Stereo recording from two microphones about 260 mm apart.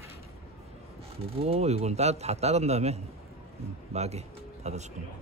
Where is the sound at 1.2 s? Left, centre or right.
Right.